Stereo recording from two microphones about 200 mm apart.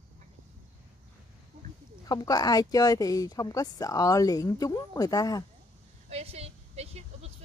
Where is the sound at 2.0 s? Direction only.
20° left (ahead or behind).